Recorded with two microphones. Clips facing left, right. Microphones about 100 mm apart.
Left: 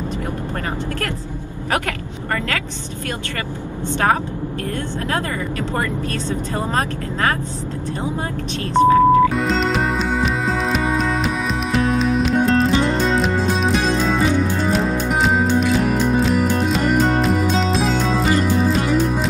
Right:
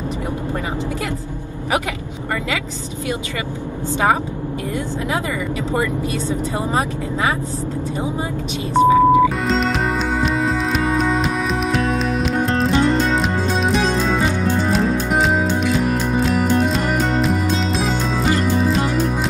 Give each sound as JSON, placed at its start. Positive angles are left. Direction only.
{"t": 8.7, "sound": "speech", "side_deg": -10}
{"t": 12.4, "sound": "music", "side_deg": 0}